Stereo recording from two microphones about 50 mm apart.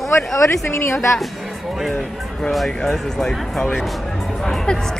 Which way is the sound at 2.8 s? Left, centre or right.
Centre.